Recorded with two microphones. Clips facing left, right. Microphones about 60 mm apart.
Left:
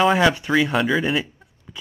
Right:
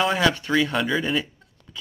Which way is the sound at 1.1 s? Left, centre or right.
Centre.